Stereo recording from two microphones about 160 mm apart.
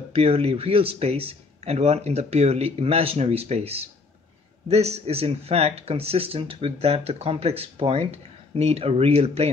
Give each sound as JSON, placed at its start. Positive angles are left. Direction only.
{"t": 0.1, "sound": "speech", "side_deg": -40}